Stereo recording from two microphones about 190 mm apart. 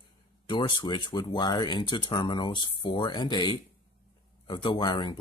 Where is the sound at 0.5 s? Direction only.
25° left (ahead or behind).